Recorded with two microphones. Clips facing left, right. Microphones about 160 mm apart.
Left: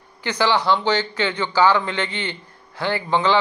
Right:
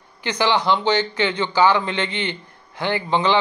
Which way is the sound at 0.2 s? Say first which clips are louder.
Even; 20° right (ahead or behind).